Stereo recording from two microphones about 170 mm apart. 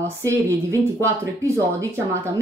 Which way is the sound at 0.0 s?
15° right (ahead or behind).